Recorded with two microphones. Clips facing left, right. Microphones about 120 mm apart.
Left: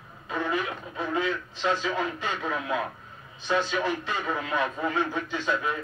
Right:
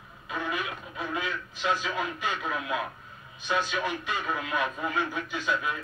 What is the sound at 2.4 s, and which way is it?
Speech, 35° left (ahead or behind).